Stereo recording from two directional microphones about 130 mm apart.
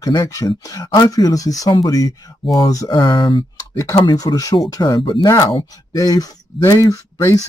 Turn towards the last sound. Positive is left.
turn(degrees=25)  # may be behind; listen again after turning